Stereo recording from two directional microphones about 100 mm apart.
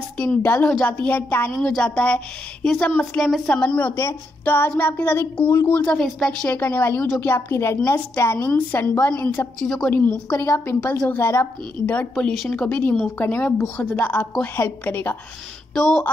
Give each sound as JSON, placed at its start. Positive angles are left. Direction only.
{"t": 0.4, "sound": "a woman's voice", "side_deg": 20}
{"t": 3.9, "sound": "a woman's voice", "side_deg": 25}
{"t": 5.9, "sound": "a woman's voice", "side_deg": 5}
{"t": 6.6, "sound": "a woman's voice", "side_deg": 20}
{"t": 10.3, "sound": "a woman's voice", "side_deg": 30}
{"t": 12.2, "sound": "a woman's voice", "side_deg": 5}
{"t": 15.7, "sound": "speech", "side_deg": 5}